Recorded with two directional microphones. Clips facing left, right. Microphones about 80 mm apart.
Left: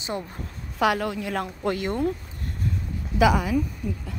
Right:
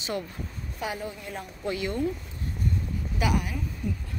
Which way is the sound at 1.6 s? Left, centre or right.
Left.